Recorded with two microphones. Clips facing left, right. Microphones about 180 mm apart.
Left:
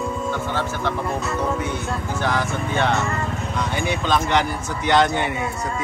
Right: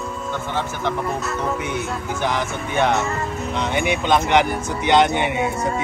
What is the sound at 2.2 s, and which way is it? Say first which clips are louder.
Speech: even; 15° right (ahead or behind).